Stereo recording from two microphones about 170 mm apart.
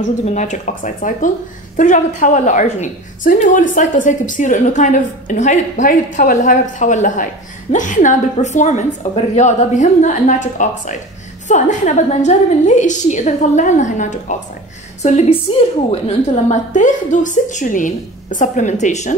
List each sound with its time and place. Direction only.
0.0 s a woman's voice: 45° left (ahead or behind)